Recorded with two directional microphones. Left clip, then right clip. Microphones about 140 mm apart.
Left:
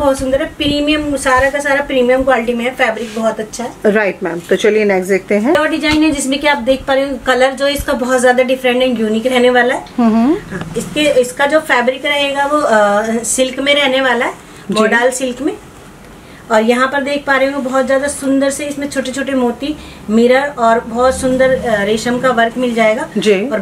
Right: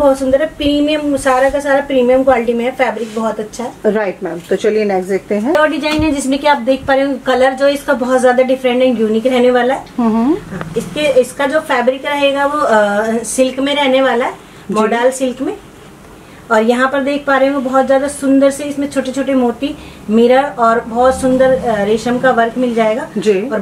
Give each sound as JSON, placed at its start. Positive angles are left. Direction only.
{"t": 0.0, "sound": "a woman's voice", "side_deg": 0}
{"t": 3.8, "sound": "speech", "side_deg": 30}
{"t": 5.5, "sound": "a woman's voice", "side_deg": 0}
{"t": 9.9, "sound": "speech", "side_deg": 35}
{"t": 11.0, "sound": "a woman's voice", "side_deg": 0}
{"t": 16.4, "sound": "a woman's voice", "side_deg": 0}
{"t": 20.2, "sound": "a woman's voice", "side_deg": 5}
{"t": 23.1, "sound": "speech", "side_deg": 30}